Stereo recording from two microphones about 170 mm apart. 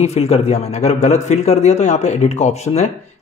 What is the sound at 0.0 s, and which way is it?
A man's voice, 40° left (ahead or behind).